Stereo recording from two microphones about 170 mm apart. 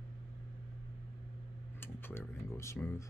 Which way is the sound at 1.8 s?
15° left (ahead or behind).